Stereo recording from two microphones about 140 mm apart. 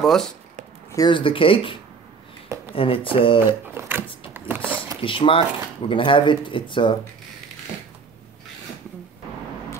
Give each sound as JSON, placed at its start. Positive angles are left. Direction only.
{"t": 0.0, "sound": "speech", "side_deg": 0}
{"t": 0.9, "sound": "speech", "side_deg": 35}
{"t": 3.3, "sound": "a sound", "side_deg": -15}
{"t": 5.0, "sound": "speech", "side_deg": 40}